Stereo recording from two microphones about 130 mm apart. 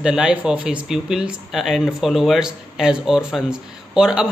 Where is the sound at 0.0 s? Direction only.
5° right (ahead or behind).